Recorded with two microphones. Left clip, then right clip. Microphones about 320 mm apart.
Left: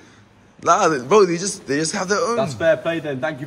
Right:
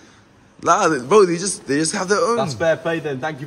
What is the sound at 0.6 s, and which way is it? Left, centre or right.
Speech, centre.